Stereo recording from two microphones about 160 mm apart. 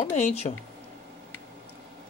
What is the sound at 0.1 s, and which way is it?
Speech, 40° left (ahead or behind).